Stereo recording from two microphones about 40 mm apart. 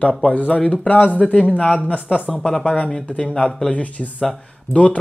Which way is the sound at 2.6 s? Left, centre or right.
Left.